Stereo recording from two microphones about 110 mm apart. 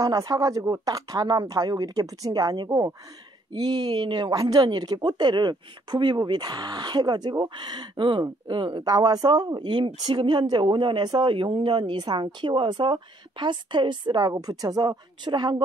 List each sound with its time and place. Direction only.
0.0 s speech: 35° right (ahead or behind)